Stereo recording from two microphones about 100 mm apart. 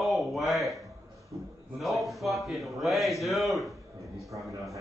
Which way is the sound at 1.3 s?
40° right (ahead or behind).